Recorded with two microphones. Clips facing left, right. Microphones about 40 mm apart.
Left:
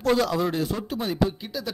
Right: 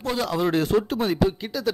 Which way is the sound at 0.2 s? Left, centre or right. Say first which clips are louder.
Right 1 dB; right.